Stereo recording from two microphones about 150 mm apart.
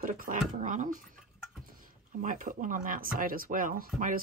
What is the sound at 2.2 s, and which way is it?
Speech, 65° right (ahead or behind).